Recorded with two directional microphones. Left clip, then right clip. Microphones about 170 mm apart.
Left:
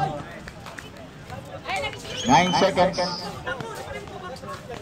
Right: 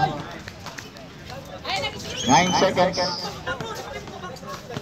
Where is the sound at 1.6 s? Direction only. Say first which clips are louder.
Right 1 dB; 20° left (ahead or behind).